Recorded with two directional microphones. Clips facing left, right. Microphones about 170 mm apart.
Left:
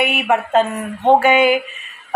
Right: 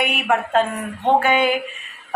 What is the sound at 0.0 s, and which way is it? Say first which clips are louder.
A woman's voice: left 3 dB; 5° left (ahead or behind).